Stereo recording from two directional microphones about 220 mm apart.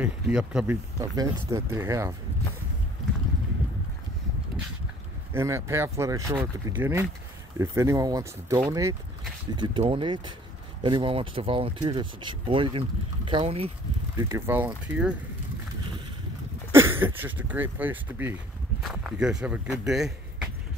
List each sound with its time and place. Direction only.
0.0 s speech: 5° right (ahead or behind)
0.9 s speech: 15° right (ahead or behind)
5.3 s speech: 10° right (ahead or behind)
14.1 s speech: 10° right (ahead or behind)
16.7 s speech: 10° right (ahead or behind)